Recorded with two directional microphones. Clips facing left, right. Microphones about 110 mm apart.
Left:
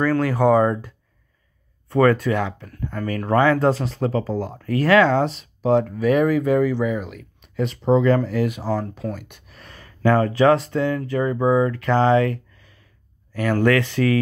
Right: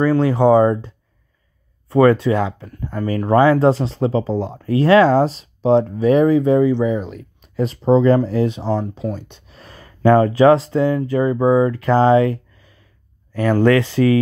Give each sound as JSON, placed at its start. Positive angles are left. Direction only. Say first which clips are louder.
{"t": 0.0, "sound": "speech", "louder": "right 4 dB", "side_deg": -25}
{"t": 9.1, "sound": "a sound", "louder": "right 4 dB", "side_deg": -25}
{"t": 10.0, "sound": "speech", "louder": "right 5 dB", "side_deg": -20}